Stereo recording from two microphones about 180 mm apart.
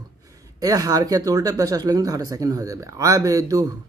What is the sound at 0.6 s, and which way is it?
Speech, 20° right (ahead or behind).